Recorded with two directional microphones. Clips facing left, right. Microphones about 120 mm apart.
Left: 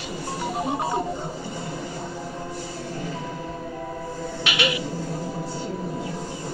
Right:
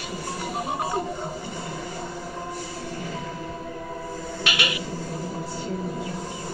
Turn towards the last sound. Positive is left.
turn(degrees=25)  # may be behind; listen again after turning